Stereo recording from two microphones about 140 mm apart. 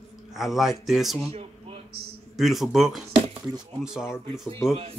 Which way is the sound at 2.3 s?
Centre (ahead or behind).